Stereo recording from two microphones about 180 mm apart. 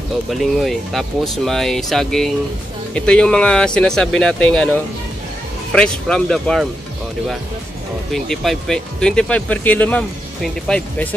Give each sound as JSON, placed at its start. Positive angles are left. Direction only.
{"t": 0.3, "sound": "speech", "side_deg": 0}
{"t": 8.1, "sound": "speech", "side_deg": 0}